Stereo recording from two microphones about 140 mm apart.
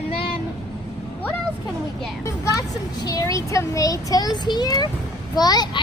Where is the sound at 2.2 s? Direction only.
25° left (ahead or behind).